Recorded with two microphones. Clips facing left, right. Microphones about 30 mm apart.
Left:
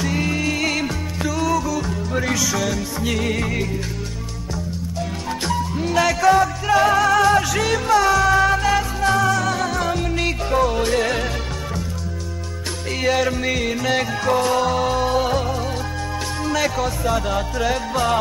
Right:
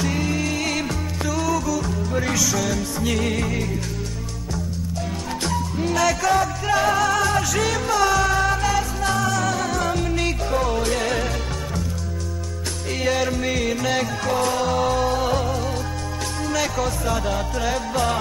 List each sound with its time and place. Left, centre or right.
0.2 s music: centre
5.9 s music: centre
13.0 s music: centre
15.0 s music: centre
15.3 s music: centre